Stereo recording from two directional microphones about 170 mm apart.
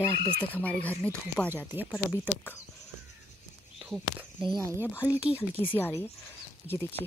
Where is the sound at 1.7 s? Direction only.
10° right (ahead or behind).